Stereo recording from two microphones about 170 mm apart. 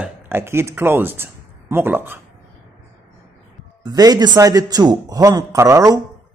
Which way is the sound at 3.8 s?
20° right (ahead or behind).